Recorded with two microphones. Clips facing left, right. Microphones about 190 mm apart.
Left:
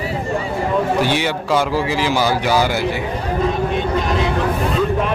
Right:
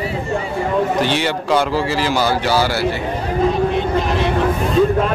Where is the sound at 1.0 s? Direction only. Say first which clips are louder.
Even; 10° left (ahead or behind).